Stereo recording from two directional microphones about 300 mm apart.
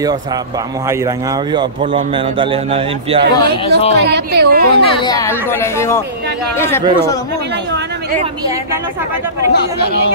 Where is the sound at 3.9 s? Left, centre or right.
Right.